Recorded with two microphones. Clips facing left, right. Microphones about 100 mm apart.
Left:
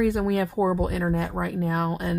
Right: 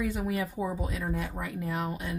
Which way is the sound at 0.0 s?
65° left (ahead or behind).